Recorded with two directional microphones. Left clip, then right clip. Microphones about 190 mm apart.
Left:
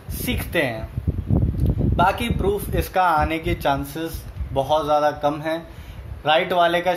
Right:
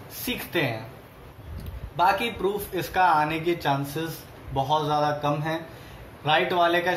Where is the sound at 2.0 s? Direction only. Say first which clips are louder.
Left 2 dB; 55° left (ahead or behind).